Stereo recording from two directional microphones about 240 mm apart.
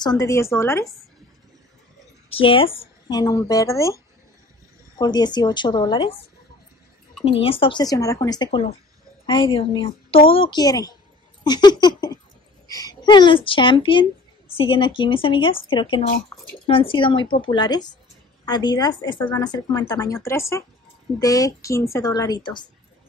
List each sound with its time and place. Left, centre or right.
0.0 s speech: centre
2.2 s speech: left
7.2 s a woman's voice: left
11.4 s laughter: centre
12.6 s a woman's voice: centre
16.3 s drip: centre
16.6 s a woman's voice: left